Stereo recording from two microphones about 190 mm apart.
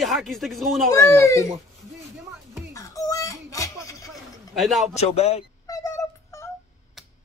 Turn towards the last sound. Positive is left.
turn(degrees=15)  # may be behind; listen again after turning